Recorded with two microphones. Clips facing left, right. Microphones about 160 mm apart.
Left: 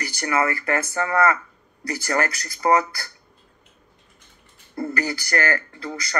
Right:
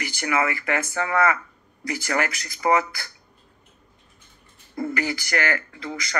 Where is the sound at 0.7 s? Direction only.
40° left (ahead or behind).